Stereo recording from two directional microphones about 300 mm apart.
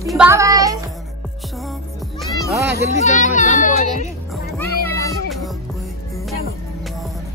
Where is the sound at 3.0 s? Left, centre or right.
Left.